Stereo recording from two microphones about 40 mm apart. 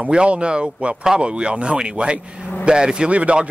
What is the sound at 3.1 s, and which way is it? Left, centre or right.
Speech, right.